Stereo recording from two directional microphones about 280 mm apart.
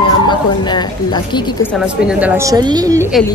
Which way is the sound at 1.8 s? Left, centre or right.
Centre.